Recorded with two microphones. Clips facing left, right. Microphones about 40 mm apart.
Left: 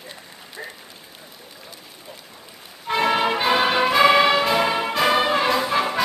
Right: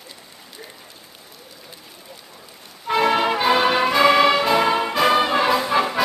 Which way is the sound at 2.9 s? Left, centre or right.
Centre.